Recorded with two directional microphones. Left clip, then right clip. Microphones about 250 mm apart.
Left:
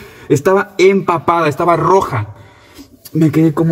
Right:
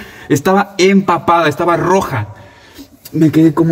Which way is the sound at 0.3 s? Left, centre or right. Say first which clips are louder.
Even; centre.